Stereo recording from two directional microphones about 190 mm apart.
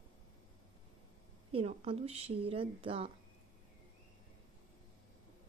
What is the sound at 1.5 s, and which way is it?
A woman's voice, 30° right (ahead or behind).